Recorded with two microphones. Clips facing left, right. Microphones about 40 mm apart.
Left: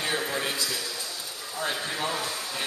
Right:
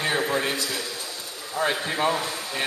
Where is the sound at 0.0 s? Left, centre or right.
Centre.